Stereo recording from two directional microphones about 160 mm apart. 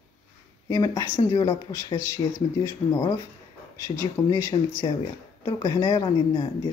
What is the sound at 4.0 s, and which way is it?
Speech, 20° left (ahead or behind).